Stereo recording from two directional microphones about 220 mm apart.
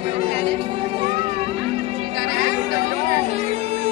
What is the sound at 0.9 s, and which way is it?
Music, 25° right (ahead or behind).